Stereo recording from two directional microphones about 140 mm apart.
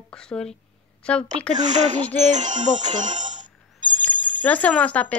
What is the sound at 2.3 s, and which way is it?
Speech, 60° right (ahead or behind).